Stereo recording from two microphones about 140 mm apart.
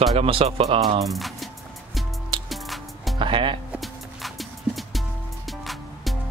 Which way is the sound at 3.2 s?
35° right (ahead or behind).